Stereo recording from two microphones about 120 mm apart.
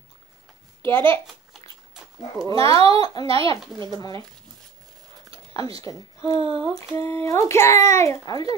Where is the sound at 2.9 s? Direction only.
35° left (ahead or behind).